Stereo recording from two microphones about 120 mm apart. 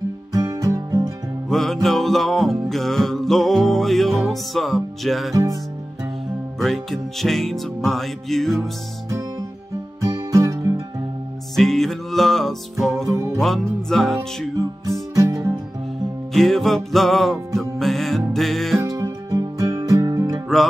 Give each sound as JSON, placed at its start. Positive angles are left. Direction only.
{"t": 0.3, "sound": "music", "side_deg": -30}
{"t": 1.5, "sound": "music", "side_deg": 0}
{"t": 5.3, "sound": "music", "side_deg": -25}
{"t": 6.6, "sound": "music", "side_deg": 0}
{"t": 10.0, "sound": "music", "side_deg": -30}
{"t": 11.5, "sound": "music", "side_deg": 0}
{"t": 13.1, "sound": "music", "side_deg": -20}
{"t": 13.4, "sound": "music", "side_deg": 0}
{"t": 15.1, "sound": "music", "side_deg": -25}
{"t": 16.3, "sound": "music", "side_deg": 0}
{"t": 18.8, "sound": "music", "side_deg": -25}